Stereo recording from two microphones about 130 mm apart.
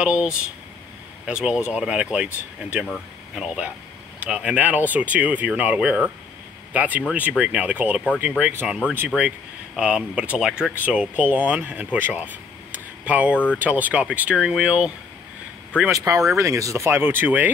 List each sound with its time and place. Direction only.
0.0 s speech: 10° right (ahead or behind)
9.8 s speech: 10° right (ahead or behind)
15.9 s speech: 25° right (ahead or behind)